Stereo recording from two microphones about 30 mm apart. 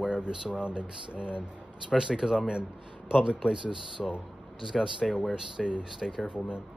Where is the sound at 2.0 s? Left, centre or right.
Centre.